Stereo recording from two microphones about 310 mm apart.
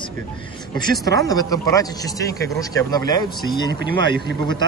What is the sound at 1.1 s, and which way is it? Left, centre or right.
A man's voice, centre.